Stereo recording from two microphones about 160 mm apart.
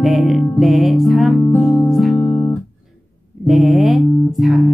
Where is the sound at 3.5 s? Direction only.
Centre (ahead or behind).